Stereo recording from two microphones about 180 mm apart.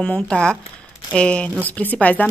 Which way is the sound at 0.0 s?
5° left (ahead or behind).